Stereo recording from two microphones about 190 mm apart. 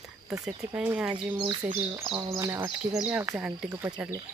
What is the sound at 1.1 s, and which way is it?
Speech, 25° right (ahead or behind).